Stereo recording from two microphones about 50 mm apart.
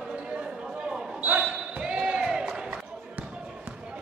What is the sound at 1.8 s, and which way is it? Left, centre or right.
Crowd, centre.